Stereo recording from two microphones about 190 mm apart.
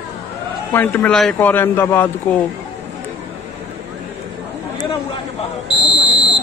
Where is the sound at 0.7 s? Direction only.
10° left (ahead or behind).